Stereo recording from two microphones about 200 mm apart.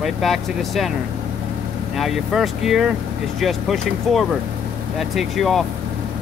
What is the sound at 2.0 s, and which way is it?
Speech, centre (ahead or behind).